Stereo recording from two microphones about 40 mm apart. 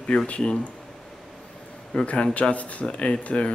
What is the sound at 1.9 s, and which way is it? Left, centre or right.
Speech, left.